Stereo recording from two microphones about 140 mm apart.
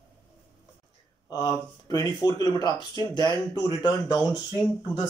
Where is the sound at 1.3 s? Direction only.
25° left (ahead or behind).